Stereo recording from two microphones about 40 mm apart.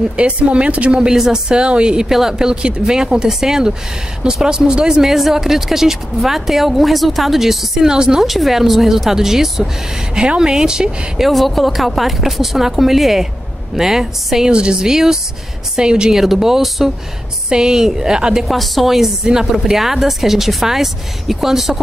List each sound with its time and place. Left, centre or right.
0.1 s speech: right
1.0 s speech: centre
2.0 s speech: centre
8.2 s speech: centre
11.1 s speech: centre
14.5 s speech: right
16.1 s speech: centre
17.5 s speech: centre
18.5 s speech: centre